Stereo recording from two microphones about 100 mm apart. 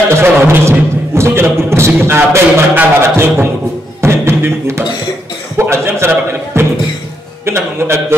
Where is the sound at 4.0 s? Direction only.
25° right (ahead or behind).